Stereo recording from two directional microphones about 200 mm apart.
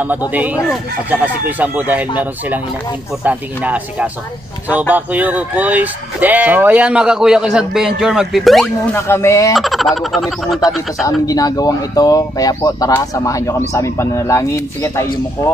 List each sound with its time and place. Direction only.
0.0 s speech: 10° right (ahead or behind)
8.9 s speech: 10° left (ahead or behind)
9.6 s speech: centre (ahead or behind)
11.1 s speech: 20° left (ahead or behind)